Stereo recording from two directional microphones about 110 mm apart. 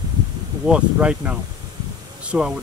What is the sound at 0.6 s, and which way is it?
Speech, 10° right (ahead or behind).